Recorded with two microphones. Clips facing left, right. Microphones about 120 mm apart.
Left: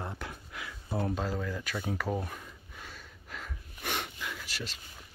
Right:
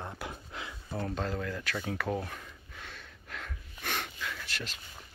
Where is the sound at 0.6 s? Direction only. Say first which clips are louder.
Right 1 dB; 30° right (ahead or behind).